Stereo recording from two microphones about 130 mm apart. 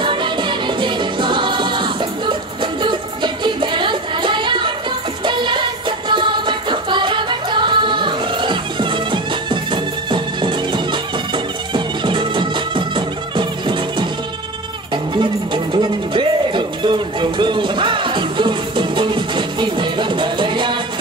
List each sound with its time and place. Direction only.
0.0 s music: 40° right (ahead or behind)
15.1 s music: 35° right (ahead or behind)